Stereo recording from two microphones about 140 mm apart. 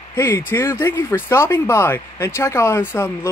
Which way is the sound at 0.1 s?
15° left (ahead or behind).